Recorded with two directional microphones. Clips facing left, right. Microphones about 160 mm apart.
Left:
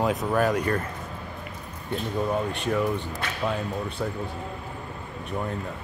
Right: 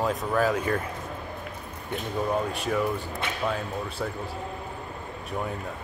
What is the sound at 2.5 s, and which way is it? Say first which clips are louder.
Speech: left 1 dB; centre (ahead or behind).